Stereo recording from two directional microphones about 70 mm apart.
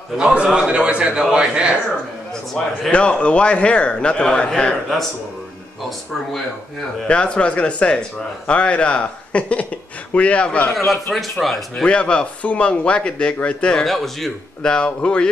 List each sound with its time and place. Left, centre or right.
0.2 s a man's voice: centre
2.6 s speech: centre
7.1 s speech: centre
10.9 s speech: centre
11.7 s speech: centre
13.8 s speech: centre
14.7 s speech: centre